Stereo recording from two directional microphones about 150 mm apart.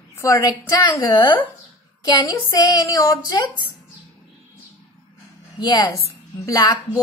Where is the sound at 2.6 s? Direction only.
25° left (ahead or behind).